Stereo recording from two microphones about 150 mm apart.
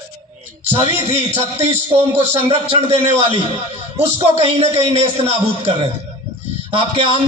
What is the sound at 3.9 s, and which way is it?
Speech, 45° right (ahead or behind).